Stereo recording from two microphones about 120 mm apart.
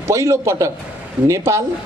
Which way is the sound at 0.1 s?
25° right (ahead or behind).